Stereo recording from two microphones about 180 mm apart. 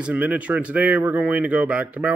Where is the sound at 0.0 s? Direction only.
10° right (ahead or behind).